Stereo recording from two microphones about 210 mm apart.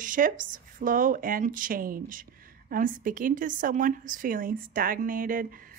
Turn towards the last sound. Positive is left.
turn(degrees=-40)  # may be behind; listen again after turning